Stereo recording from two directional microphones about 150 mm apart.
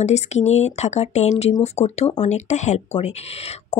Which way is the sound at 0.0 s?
50° left (ahead or behind).